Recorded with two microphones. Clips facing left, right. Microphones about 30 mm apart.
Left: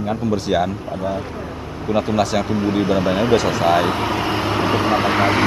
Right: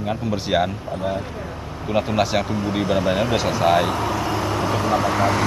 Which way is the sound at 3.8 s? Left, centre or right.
Left.